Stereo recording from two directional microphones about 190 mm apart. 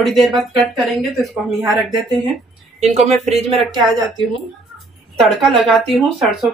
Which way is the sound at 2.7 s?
35° right (ahead or behind).